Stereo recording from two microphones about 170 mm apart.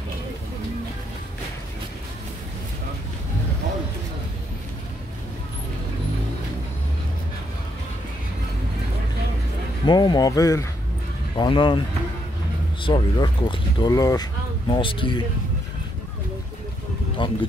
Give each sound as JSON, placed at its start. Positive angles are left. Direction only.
{"t": 9.8, "sound": "speech", "side_deg": 25}
{"t": 12.8, "sound": "speech", "side_deg": 25}
{"t": 17.2, "sound": "speech", "side_deg": 30}